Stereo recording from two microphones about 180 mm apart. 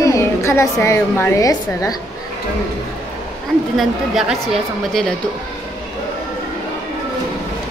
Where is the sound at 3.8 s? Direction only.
Centre (ahead or behind).